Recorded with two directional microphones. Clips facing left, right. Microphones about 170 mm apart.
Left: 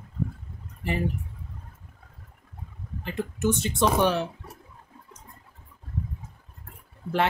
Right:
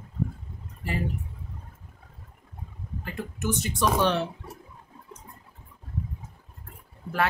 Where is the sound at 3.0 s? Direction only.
25° left (ahead or behind).